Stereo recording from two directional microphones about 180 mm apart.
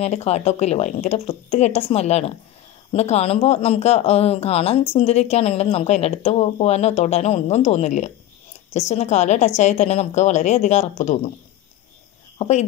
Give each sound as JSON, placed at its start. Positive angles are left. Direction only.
{"t": 0.0, "sound": "speech", "side_deg": 35}
{"t": 12.4, "sound": "speech", "side_deg": 40}